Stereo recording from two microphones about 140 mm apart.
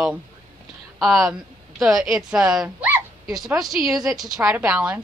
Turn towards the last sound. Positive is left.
turn(degrees=-5)  # may be behind; listen again after turning